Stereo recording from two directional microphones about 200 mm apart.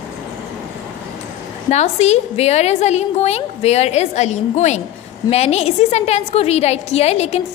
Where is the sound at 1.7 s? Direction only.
35° left (ahead or behind).